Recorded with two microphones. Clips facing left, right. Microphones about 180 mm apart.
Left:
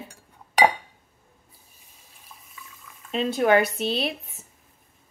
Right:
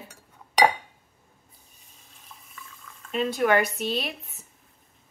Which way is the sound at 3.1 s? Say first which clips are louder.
Left 2 dB; 30° left (ahead or behind).